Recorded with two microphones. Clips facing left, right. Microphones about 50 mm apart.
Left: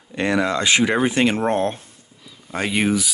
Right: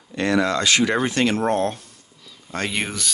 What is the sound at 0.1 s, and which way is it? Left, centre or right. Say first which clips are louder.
Speech: even; left.